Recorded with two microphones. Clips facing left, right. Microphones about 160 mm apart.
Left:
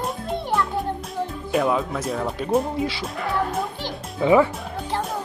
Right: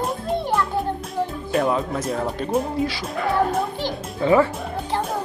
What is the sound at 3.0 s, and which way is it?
Music, centre (ahead or behind).